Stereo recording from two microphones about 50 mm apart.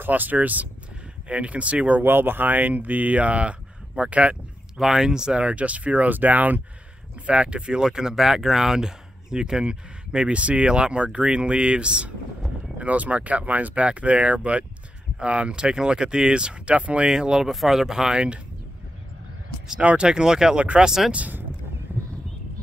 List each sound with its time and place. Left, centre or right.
0.0 s speech: right
2.0 s speech: right
4.7 s speech: centre; by 6.6 s right
7.2 s speech: right
17.1 s speech: centre
19.8 s speech: right